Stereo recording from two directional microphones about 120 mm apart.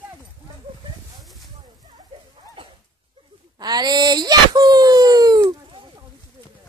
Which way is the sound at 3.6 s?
35° right (ahead or behind).